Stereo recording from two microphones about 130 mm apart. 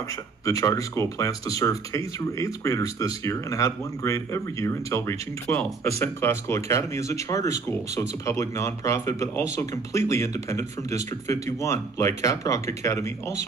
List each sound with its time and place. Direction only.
0.5 s speech: 25° left (ahead or behind)